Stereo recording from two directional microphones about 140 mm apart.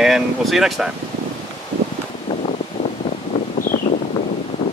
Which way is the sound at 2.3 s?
35° left (ahead or behind).